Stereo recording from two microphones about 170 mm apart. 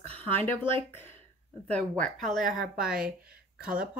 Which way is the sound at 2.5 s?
55° right (ahead or behind).